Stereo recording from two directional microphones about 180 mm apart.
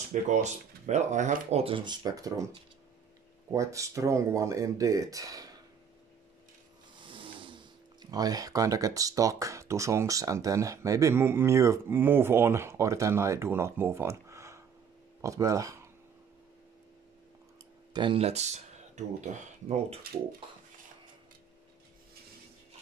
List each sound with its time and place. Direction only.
0.1 s speech: 40° right (ahead or behind); by 2.4 s 20° right (ahead or behind)
3.5 s speech: 15° right (ahead or behind)
7.1 s speech: 30° right (ahead or behind)
17.9 s speech: 30° right (ahead or behind)